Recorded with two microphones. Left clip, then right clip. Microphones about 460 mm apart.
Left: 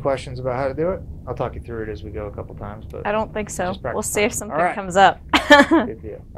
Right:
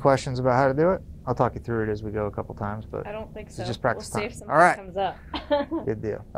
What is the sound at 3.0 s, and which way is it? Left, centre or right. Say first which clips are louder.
A woman's voice: left 13 dB; left.